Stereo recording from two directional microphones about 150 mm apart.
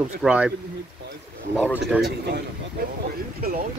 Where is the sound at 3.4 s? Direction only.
80° right.